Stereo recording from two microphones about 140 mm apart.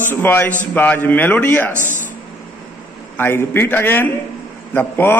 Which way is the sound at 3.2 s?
15° left (ahead or behind).